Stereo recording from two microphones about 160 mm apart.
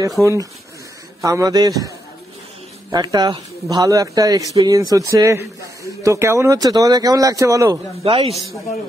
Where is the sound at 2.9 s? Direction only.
25° right (ahead or behind).